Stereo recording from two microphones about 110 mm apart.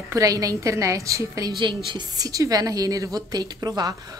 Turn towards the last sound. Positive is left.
turn(degrees=-35)  # may be behind; listen again after turning